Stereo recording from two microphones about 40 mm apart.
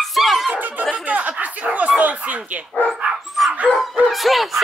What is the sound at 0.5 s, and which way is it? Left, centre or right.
Chatter, right.